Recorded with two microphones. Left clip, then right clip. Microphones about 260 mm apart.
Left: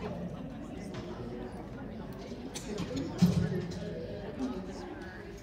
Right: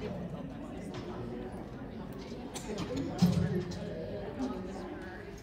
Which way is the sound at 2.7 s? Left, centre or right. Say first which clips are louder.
Right 1 dB; right.